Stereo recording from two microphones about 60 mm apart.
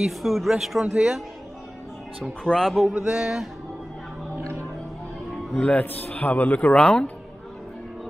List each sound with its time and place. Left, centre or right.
0.0 s speech: centre
2.4 s speech: centre
2.9 s a sound: centre
5.6 s a man's voice: left